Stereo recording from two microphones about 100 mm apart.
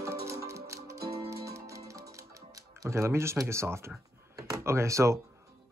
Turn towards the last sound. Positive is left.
turn(degrees=-30)  # may be behind; listen again after turning